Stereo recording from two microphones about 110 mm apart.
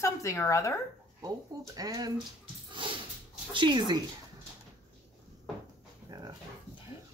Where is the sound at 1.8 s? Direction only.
35° right (ahead or behind).